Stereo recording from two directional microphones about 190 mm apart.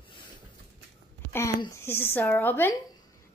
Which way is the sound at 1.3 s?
15° left (ahead or behind).